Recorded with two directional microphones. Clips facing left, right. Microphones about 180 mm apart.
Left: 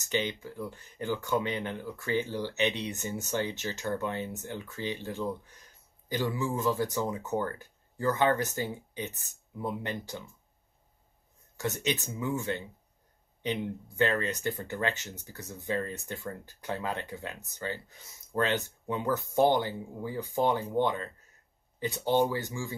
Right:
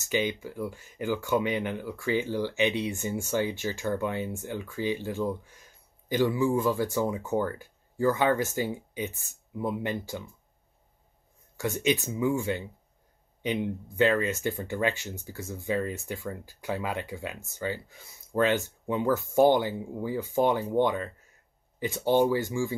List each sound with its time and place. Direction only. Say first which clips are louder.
0.1 s speech: right 3 dB; 15° right (ahead or behind)
11.8 s speech: right 9 dB; 15° right (ahead or behind)